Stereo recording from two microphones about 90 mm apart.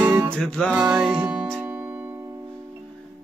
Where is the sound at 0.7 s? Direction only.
10° right (ahead or behind).